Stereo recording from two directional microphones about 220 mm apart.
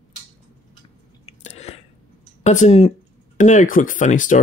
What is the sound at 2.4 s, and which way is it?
Speech, 30° left (ahead or behind).